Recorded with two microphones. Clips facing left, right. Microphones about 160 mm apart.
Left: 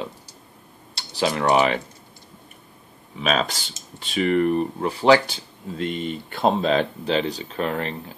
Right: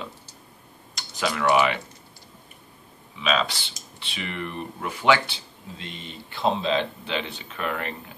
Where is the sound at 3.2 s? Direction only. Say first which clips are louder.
Left 2 dB; 45° left (ahead or behind).